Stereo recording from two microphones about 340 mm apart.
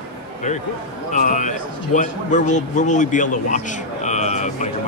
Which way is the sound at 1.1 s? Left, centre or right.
Left.